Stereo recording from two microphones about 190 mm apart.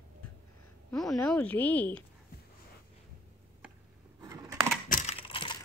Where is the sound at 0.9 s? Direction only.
Centre (ahead or behind).